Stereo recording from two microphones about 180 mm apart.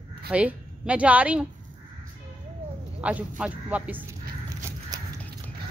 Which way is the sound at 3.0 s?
5° right (ahead or behind).